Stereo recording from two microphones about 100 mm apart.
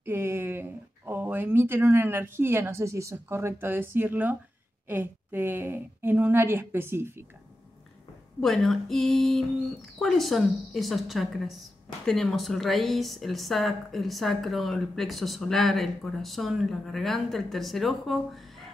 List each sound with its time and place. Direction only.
0.0 s a woman's voice: 25° right (ahead or behind)
8.4 s speech: 5° left (ahead or behind)